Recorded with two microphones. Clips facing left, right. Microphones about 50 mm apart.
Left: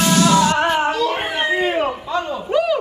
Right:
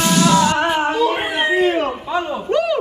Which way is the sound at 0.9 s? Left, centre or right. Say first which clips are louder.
Right 2 dB; centre.